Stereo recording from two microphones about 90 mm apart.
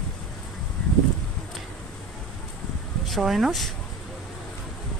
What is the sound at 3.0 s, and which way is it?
Speech, centre (ahead or behind).